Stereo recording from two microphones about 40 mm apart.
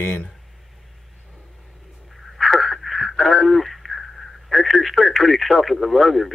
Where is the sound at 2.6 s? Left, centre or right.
Centre.